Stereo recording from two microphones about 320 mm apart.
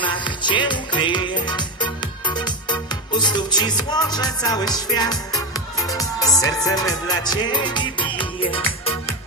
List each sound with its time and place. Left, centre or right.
0.0 s music: centre